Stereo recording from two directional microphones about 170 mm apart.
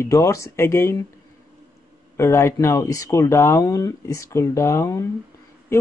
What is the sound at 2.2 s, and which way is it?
Speech, 15° left (ahead or behind).